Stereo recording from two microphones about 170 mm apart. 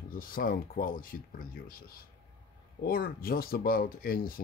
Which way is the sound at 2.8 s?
60° left (ahead or behind).